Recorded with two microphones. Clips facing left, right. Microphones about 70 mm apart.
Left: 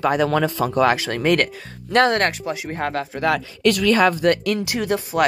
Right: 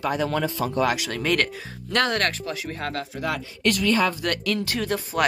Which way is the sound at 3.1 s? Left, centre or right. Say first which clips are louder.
Left 7 dB; left.